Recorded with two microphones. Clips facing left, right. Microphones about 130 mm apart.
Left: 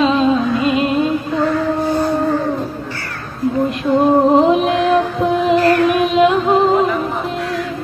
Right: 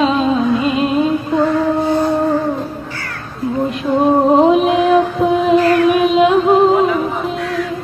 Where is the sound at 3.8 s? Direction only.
5° right (ahead or behind).